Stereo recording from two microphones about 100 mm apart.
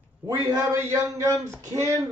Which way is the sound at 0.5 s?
35° right (ahead or behind).